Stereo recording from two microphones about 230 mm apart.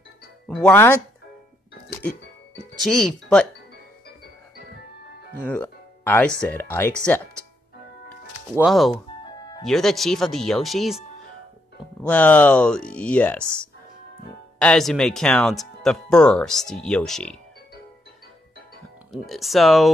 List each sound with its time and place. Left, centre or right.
0.5 s speech: centre
2.8 s speech: centre
5.4 s speech: centre
8.5 s speech: centre
9.2 s music: centre
9.7 s speech: centre
12.0 s speech: centre
19.1 s speech: centre